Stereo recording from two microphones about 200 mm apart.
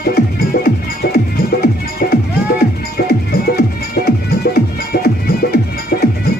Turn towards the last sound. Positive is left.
turn(degrees=50)  # may be behind; listen again after turning